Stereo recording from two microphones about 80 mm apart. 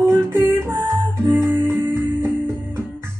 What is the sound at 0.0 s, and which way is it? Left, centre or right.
Music, right.